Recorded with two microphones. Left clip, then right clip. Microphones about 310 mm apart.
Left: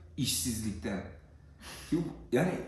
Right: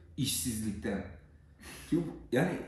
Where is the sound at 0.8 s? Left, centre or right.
Centre.